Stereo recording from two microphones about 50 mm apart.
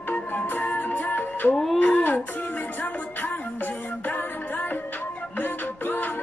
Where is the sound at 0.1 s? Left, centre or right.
Left.